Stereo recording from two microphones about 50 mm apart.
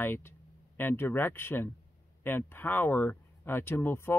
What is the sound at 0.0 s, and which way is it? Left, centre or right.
Speech, left.